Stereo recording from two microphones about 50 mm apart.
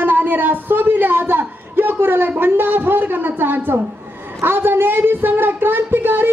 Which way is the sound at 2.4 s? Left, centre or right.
Right.